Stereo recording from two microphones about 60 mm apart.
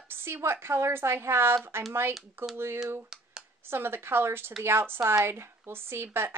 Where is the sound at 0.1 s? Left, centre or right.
Right.